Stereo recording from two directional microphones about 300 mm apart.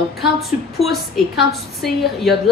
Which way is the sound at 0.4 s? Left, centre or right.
Centre.